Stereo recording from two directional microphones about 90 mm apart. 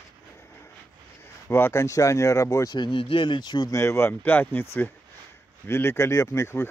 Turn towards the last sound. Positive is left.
turn(degrees=35)  # may be behind; listen again after turning